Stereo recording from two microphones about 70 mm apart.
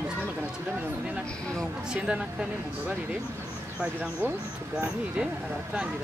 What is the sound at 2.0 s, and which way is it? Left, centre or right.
Speech, centre.